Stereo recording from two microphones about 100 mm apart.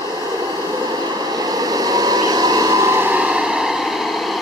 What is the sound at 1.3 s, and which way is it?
Vehicle, 40° right (ahead or behind).